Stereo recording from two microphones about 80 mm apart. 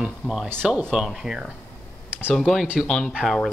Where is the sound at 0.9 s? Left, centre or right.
Centre.